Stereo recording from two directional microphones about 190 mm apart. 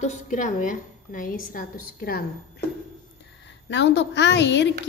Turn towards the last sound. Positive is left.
turn(degrees=65)  # may be behind; listen again after turning